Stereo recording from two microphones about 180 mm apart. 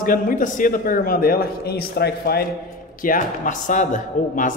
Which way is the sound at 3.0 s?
45° left (ahead or behind).